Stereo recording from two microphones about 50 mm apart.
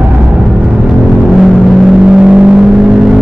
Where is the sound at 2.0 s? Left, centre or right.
Centre.